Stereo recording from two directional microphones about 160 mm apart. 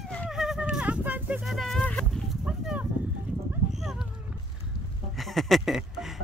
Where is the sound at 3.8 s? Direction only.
Centre (ahead or behind).